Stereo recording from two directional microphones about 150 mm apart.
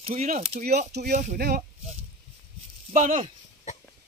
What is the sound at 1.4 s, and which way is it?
Speech, 90° right.